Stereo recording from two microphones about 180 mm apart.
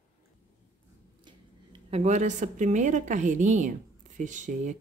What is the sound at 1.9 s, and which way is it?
A woman's voice, 40° right (ahead or behind).